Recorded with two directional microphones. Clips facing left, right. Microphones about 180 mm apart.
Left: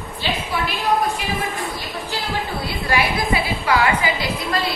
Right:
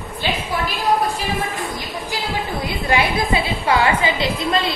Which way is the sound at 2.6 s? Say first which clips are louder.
Right 2 dB; 20° right (ahead or behind).